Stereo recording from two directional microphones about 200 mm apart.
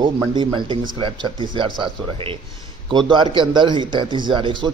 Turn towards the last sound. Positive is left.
turn(degrees=-25)  # may be behind; listen again after turning